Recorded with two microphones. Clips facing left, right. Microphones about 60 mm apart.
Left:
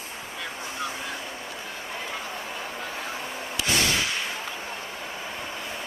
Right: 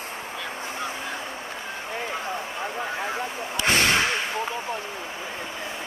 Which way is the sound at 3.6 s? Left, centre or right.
Right.